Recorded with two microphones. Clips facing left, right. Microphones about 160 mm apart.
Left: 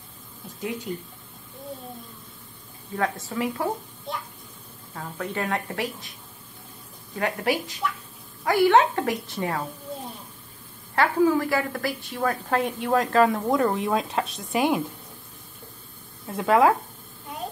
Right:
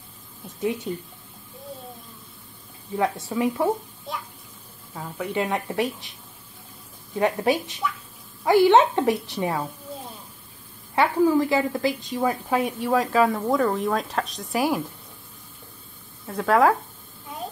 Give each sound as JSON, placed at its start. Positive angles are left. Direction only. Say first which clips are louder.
{"t": 0.9, "sound": "a woman's voice", "louder": "right 2 dB", "side_deg": -25}
{"t": 3.0, "sound": "a woman's voice", "louder": "right 3 dB", "side_deg": -20}
{"t": 4.9, "sound": "a woman's voice", "louder": "right 3 dB", "side_deg": -10}
{"t": 7.2, "sound": "a woman's voice", "louder": "right 4 dB", "side_deg": -20}
{"t": 11.0, "sound": "a woman's voice", "louder": "right 1 dB", "side_deg": -15}
{"t": 16.3, "sound": "a woman's voice", "louder": "even", "side_deg": 0}